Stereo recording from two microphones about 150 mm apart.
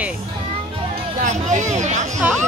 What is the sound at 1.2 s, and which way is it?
Speech, 55° right (ahead or behind).